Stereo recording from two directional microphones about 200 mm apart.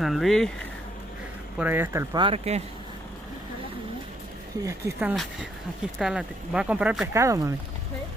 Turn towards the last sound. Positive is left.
turn(degrees=-15)  # may be behind; listen again after turning